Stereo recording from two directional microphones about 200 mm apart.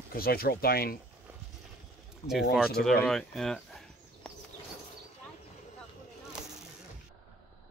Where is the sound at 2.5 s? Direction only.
Centre (ahead or behind).